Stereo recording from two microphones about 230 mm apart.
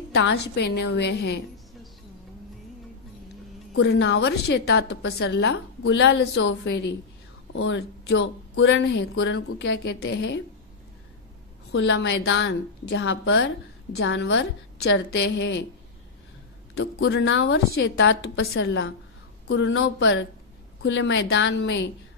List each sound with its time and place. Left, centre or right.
0.1 s a woman's voice: left
3.7 s a woman's voice: left
11.7 s a woman's voice: left
16.7 s a woman's voice: left